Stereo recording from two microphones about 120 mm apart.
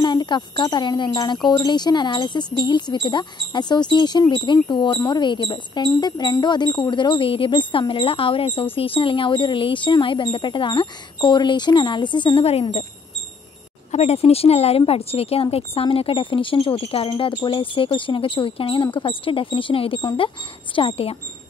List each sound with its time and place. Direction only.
0.0 s speech: 35° left (ahead or behind)
13.9 s speech: 60° left (ahead or behind)